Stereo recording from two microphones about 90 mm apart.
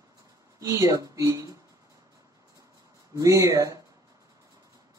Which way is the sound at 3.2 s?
35° right (ahead or behind).